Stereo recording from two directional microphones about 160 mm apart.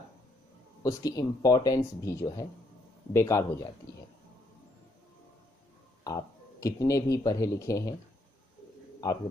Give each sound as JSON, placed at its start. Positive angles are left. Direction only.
{"t": 0.8, "sound": "speech", "side_deg": 20}
{"t": 6.0, "sound": "speech", "side_deg": 20}
{"t": 9.0, "sound": "a man's voice", "side_deg": 25}